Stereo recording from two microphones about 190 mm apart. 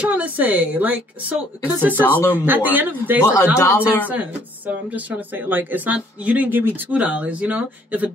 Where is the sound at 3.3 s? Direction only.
15° left (ahead or behind).